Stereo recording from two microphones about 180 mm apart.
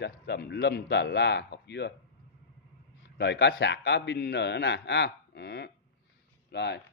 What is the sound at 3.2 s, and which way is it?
A man's voice, 70° left (ahead or behind).